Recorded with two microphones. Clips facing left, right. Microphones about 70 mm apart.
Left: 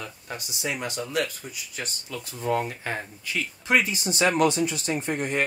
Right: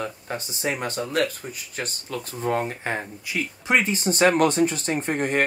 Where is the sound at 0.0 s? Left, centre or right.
Right.